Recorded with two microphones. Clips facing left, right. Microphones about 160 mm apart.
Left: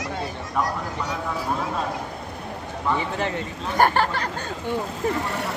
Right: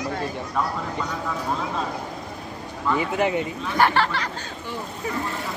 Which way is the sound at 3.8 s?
45° left (ahead or behind).